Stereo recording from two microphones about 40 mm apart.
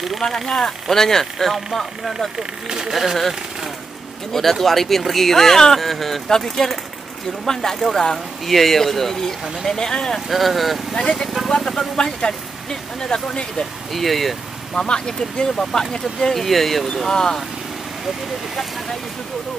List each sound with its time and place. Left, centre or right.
0.2 s speech: centre
2.3 s speech: centre
2.9 s speech: centre
10.2 s speech: centre
11.0 s speech: centre
13.9 s speech: centre
14.7 s speech: left